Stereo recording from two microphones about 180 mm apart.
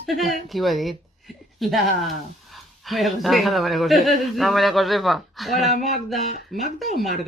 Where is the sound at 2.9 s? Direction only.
Centre (ahead or behind).